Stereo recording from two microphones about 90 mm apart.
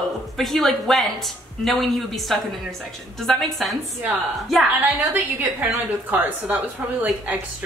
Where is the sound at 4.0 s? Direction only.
20° right (ahead or behind).